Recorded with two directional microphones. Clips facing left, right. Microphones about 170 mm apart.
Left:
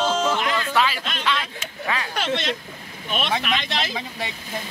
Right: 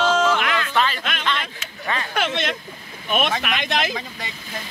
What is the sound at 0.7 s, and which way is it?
Speech, 5° left (ahead or behind).